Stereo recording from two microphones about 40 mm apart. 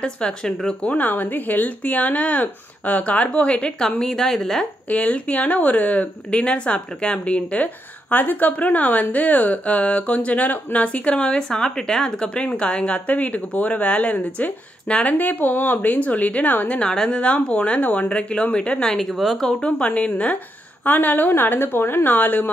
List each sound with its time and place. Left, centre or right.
0.0 s speech: left
0.8 s a woman's voice: left
4.0 s a woman's voice: centre
4.8 s a woman's voice: left
6.3 s a woman's voice: left
11.3 s a woman's voice: centre
15.1 s a woman's voice: left
16.6 s speech: left
16.9 s a woman's voice: centre
17.2 s a woman's voice: left
18.9 s speech: centre
19.9 s a woman's voice: left
20.8 s a woman's voice: left